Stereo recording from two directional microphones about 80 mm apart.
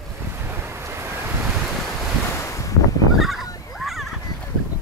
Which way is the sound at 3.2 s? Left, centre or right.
Centre.